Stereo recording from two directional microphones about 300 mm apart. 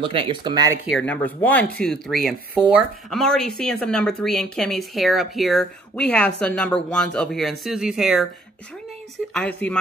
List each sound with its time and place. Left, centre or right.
0.0 s speech: centre
0.8 s speech: centre
9.3 s speech: centre